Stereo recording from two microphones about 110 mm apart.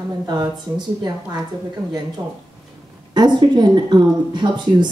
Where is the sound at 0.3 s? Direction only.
40° right (ahead or behind).